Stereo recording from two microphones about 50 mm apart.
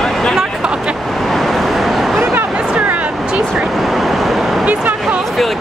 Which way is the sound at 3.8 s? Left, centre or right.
Centre.